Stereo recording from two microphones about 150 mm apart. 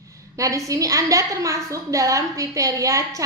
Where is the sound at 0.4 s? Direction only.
20° right (ahead or behind).